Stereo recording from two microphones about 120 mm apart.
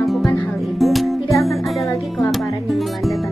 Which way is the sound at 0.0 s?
Centre (ahead or behind).